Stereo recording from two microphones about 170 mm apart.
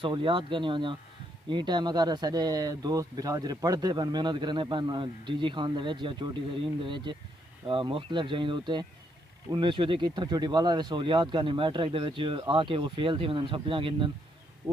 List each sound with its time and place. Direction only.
0.0 s speech: 30° right (ahead or behind)